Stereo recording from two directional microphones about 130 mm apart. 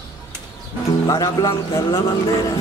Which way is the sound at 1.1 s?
25° left (ahead or behind).